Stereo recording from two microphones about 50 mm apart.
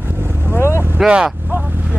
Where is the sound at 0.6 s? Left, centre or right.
Left.